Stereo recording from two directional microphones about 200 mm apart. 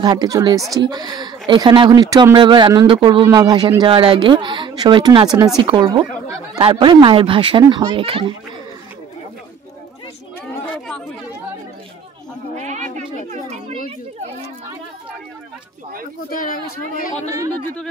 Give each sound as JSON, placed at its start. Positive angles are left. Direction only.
{"t": 0.0, "sound": "speech", "side_deg": -20}
{"t": 12.5, "sound": "a sound", "side_deg": -35}
{"t": 13.3, "sound": "children playing", "side_deg": -35}
{"t": 16.3, "sound": "speech", "side_deg": 45}